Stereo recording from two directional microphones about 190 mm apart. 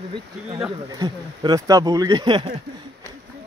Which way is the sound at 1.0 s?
20° right (ahead or behind).